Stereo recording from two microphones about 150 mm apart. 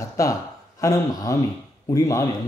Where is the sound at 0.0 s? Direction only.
20° left (ahead or behind).